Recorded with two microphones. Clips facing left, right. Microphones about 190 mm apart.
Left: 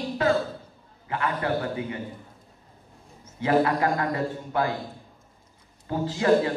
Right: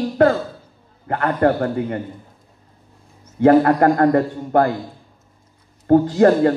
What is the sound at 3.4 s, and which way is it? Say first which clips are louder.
A man's voice: right 10 dB; 55° right (ahead or behind).